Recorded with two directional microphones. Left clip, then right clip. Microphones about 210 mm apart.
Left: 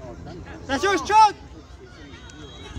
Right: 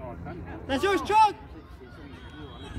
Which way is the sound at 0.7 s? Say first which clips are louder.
Left 4 dB; 35° left (ahead or behind).